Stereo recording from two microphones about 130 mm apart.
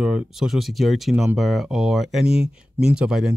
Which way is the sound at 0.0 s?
5° right (ahead or behind).